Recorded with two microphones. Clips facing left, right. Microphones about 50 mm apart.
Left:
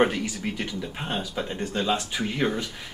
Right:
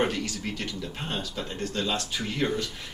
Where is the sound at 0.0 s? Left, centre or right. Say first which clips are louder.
Left 4 dB; centre.